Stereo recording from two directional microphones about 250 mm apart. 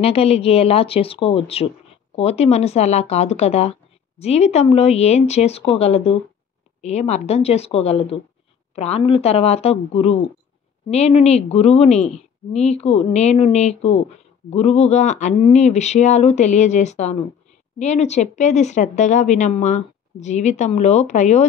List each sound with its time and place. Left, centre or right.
0.0 s a woman's voice: left